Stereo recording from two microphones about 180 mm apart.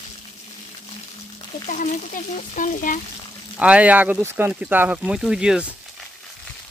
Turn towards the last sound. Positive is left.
turn(degrees=-5)  # may be behind; listen again after turning